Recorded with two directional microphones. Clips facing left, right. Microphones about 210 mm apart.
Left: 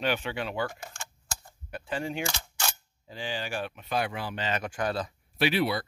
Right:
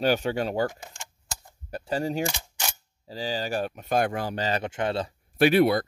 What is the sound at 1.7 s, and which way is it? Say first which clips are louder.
Speech: right 5 dB; 40° right (ahead or behind).